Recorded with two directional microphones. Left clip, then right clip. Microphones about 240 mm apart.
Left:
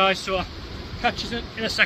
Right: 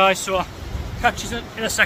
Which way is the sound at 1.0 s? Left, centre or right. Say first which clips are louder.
Right 4 dB; right.